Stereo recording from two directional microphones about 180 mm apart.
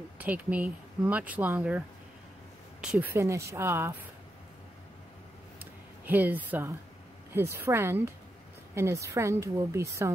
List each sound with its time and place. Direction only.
0.2 s speech: 10° right (ahead or behind)
5.6 s a sound: 10° right (ahead or behind)
7.3 s speech: 15° right (ahead or behind)